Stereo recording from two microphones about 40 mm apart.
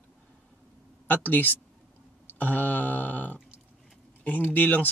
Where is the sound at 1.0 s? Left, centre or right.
Left.